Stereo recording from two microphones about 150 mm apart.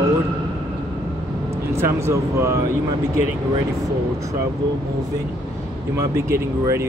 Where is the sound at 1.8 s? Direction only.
20° right (ahead or behind).